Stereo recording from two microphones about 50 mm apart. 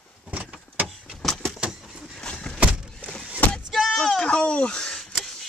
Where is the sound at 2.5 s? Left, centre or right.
Right.